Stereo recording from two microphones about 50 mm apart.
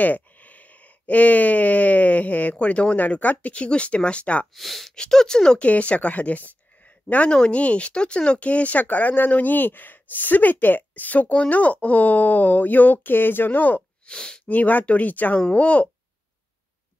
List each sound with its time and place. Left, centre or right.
0.0 s speech: left
4.6 s speech: centre
4.9 s speech: centre
5.6 s speech: left
14.0 s speech: centre
14.5 s speech: left
15.3 s speech: left